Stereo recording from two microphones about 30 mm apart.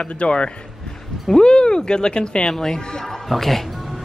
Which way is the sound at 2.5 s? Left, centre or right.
Centre.